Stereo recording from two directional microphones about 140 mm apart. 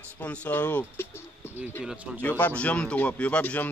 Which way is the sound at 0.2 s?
10° left (ahead or behind).